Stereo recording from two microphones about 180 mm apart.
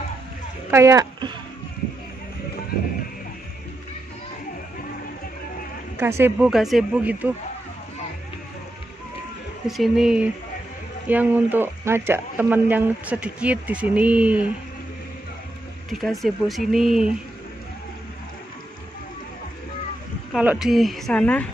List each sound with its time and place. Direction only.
0.7 s speech: 15° right (ahead or behind)
5.9 s speech: 15° right (ahead or behind)
6.5 s speech: centre (ahead or behind)
9.7 s speech: centre (ahead or behind)
15.9 s speech: centre (ahead or behind)
20.3 s speech: centre (ahead or behind)